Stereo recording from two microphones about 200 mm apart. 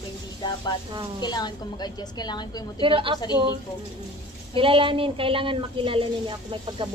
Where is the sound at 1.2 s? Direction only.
20° left (ahead or behind).